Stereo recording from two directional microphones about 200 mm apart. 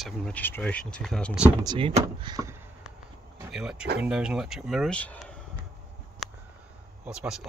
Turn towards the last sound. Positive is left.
turn(degrees=-5)  # may be behind; listen again after turning